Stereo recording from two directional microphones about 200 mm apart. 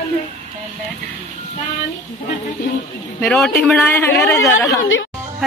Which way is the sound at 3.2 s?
Centre (ahead or behind).